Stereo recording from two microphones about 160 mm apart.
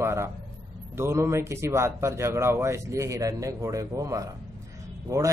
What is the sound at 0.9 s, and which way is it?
A man's voice, 15° right (ahead or behind).